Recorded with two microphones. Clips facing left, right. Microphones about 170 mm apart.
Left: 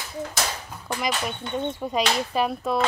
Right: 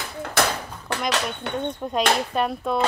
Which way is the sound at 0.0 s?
60° right (ahead or behind).